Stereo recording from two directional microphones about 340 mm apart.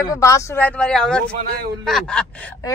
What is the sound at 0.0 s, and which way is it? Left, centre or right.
Speech, centre.